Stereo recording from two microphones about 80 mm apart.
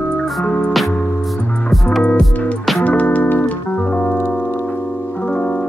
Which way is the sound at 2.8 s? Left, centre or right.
Centre.